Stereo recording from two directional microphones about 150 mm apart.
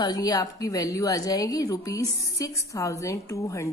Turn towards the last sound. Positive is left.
turn(degrees=20)  # may be behind; listen again after turning